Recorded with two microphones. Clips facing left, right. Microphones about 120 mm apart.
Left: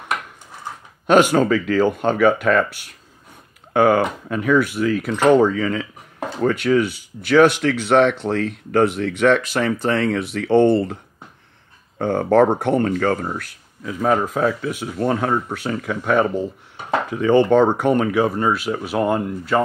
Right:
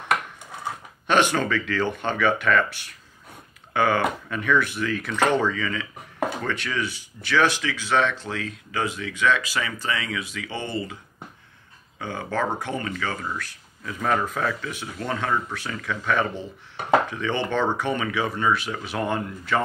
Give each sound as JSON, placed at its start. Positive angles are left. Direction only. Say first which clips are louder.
{"t": 1.3, "sound": "speech", "louder": "left 8 dB", "side_deg": 40}
{"t": 3.7, "sound": "speech", "louder": "left 6 dB", "side_deg": 35}
{"t": 6.7, "sound": "speech", "louder": "left 16 dB", "side_deg": 40}
{"t": 7.2, "sound": "speech", "louder": "left 8 dB", "side_deg": 55}
{"t": 12.0, "sound": "speech", "louder": "left 12 dB", "side_deg": 60}
{"t": 13.8, "sound": "speech", "louder": "left 5 dB", "side_deg": 25}
{"t": 18.9, "sound": "speech", "louder": "left 7 dB", "side_deg": 30}